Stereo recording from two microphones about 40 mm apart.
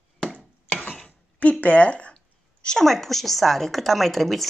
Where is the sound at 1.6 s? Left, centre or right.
Left.